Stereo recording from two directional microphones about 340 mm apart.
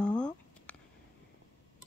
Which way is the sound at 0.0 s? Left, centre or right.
Centre.